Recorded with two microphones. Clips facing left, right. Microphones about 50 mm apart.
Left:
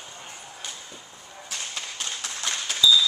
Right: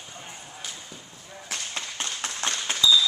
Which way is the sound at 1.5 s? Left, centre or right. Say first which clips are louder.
Right 2 dB; right.